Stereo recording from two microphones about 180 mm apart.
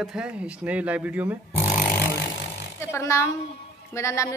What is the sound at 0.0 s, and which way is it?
Speech, 5° right (ahead or behind).